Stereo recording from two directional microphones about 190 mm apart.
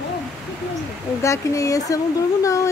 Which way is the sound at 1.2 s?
15° left (ahead or behind).